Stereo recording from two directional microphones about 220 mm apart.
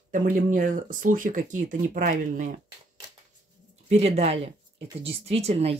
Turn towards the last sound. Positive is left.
turn(degrees=-25)  # may be behind; listen again after turning